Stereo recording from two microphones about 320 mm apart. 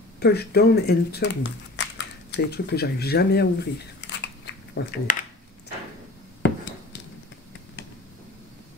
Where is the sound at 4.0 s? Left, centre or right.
Left.